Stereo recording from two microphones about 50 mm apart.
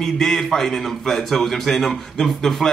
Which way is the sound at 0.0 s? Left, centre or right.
Centre.